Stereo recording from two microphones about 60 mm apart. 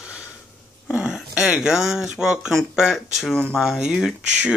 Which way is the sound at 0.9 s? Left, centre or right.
Centre.